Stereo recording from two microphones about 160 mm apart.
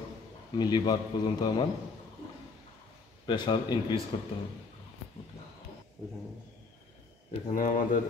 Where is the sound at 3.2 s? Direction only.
30° left (ahead or behind).